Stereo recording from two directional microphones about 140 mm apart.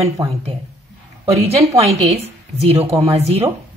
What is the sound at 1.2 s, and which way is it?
Speech, 45° right (ahead or behind).